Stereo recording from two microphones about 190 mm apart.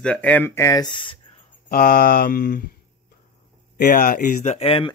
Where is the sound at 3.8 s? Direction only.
50° left (ahead or behind); by 4.9 s 30° left (ahead or behind).